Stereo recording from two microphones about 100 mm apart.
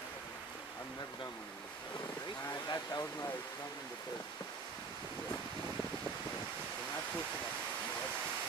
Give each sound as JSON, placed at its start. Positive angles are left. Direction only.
{"t": 2.7, "sound": "speech", "side_deg": 35}